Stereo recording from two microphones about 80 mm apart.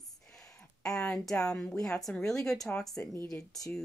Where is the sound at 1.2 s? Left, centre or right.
Centre.